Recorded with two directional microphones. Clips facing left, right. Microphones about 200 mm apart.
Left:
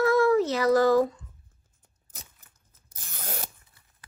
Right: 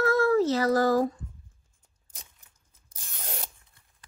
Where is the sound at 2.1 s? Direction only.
5° left (ahead or behind).